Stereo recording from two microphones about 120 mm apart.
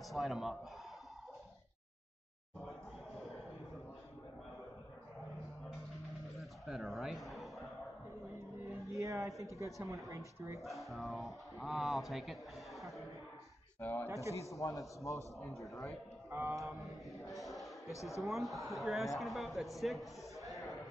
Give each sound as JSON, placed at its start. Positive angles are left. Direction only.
{"t": 0.1, "sound": "speech", "side_deg": 0}
{"t": 6.6, "sound": "speech", "side_deg": 0}
{"t": 9.0, "sound": "speech", "side_deg": -25}
{"t": 10.6, "sound": "speech", "side_deg": 0}
{"t": 13.7, "sound": "speech", "side_deg": 15}
{"t": 14.0, "sound": "speech", "side_deg": -25}
{"t": 14.6, "sound": "a man's voice", "side_deg": 30}
{"t": 16.3, "sound": "a sound", "side_deg": -15}
{"t": 16.6, "sound": "speech", "side_deg": 0}
{"t": 17.8, "sound": "a man's voice", "side_deg": 25}
{"t": 18.2, "sound": "speech", "side_deg": 0}
{"t": 20.4, "sound": "a sound", "side_deg": 0}